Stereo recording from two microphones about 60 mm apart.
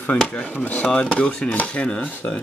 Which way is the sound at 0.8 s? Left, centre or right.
Centre.